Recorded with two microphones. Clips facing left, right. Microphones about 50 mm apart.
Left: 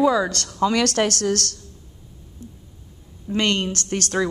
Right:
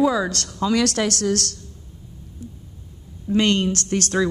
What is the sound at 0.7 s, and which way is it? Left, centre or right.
Speech, left.